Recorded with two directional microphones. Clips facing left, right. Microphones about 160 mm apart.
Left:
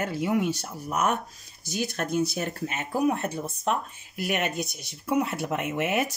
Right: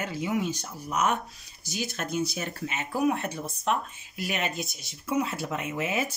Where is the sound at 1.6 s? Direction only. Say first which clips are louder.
Left 3 dB; 55° left (ahead or behind).